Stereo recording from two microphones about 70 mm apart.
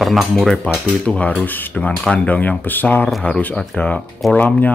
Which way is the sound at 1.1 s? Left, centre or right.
Centre.